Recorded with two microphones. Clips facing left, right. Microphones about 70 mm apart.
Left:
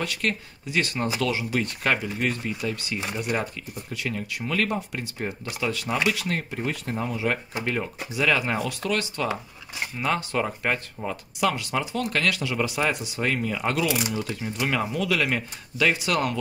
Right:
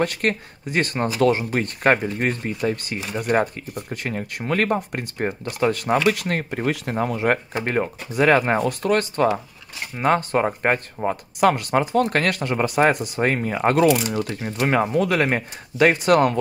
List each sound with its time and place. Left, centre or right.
0.0 s speech: right